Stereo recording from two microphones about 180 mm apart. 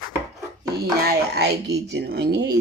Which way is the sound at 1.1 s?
65° right (ahead or behind).